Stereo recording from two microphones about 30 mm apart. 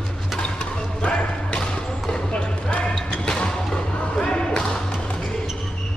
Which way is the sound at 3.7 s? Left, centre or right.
Left.